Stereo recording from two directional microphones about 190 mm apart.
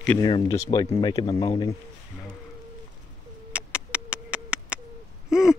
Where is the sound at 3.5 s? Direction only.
5° right (ahead or behind).